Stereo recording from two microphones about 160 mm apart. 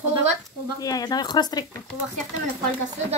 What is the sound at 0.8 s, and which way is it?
Speech, 20° left (ahead or behind).